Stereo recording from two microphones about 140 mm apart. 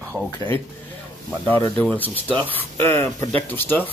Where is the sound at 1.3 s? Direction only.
15° left (ahead or behind).